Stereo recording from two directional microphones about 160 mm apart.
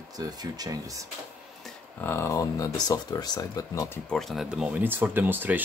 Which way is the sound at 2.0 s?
15° left (ahead or behind).